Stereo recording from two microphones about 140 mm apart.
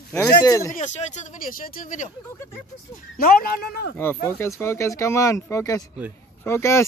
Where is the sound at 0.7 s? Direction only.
55° left (ahead or behind); by 2.0 s 75° left (ahead or behind).